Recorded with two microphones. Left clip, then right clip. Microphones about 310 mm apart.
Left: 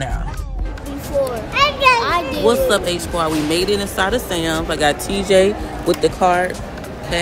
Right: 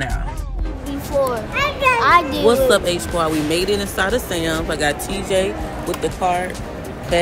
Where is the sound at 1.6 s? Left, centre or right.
Centre.